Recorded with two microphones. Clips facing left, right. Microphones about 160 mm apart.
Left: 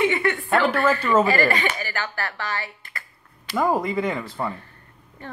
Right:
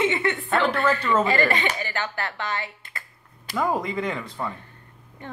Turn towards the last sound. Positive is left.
turn(degrees=-20)  # may be behind; listen again after turning